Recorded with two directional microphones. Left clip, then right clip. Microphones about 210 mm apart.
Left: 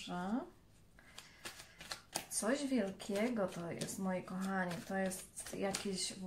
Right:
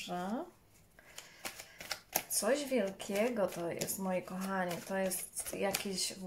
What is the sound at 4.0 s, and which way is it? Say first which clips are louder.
A woman's voice: right 3 dB; 40° right (ahead or behind).